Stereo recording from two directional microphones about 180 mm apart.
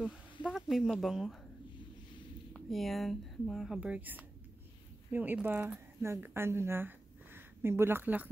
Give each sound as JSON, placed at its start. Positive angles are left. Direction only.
{"t": 0.5, "sound": "speech", "side_deg": 0}
{"t": 2.5, "sound": "speech", "side_deg": 0}